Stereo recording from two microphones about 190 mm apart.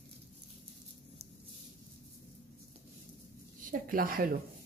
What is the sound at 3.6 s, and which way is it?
Speech, 50° right (ahead or behind).